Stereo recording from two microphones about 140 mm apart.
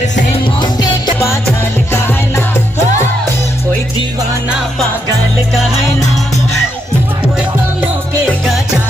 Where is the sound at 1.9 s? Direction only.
20° left (ahead or behind).